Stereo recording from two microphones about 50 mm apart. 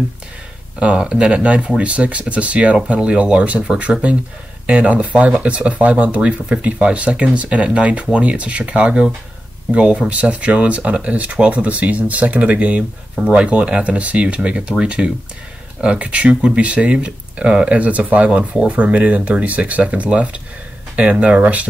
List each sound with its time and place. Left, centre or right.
0.7 s speech: right